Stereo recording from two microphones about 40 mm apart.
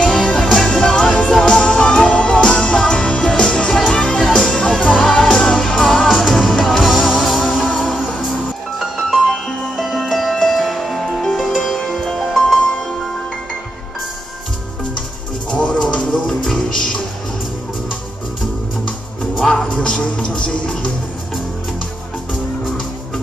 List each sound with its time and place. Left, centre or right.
0.0 s music: centre
6.0 s music: centre
9.3 s music: centre
9.8 s music: centre
16.3 s music: centre
19.4 s music: centre